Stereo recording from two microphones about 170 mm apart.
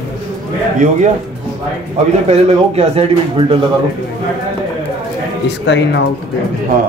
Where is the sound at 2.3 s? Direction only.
40° right (ahead or behind).